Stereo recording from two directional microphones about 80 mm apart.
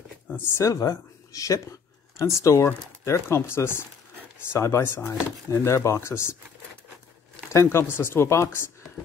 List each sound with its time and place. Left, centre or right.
0.6 s speech: left
7.6 s speech: left